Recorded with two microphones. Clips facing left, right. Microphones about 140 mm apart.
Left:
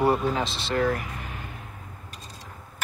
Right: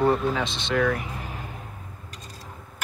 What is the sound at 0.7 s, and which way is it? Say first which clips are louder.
Speech: right 1 dB; 40° left (ahead or behind).